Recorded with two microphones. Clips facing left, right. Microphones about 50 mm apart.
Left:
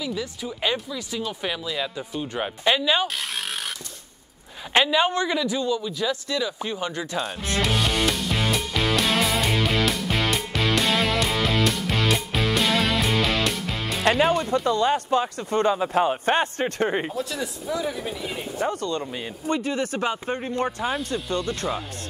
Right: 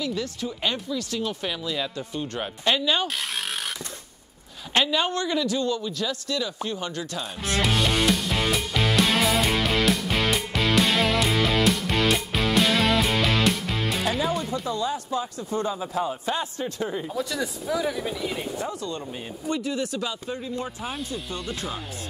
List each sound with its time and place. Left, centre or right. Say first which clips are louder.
0.0 s speech: right 1 dB; centre
4.7 s speech: left 3 dB; centre
7.7 s music: right 2 dB; centre
14.0 s speech: left 9 dB; left
17.1 s speech: right 1 dB; centre
18.7 s speech: left 5 dB; left
19.4 s speech: left 2 dB; left
21.1 s speech: left 5 dB; left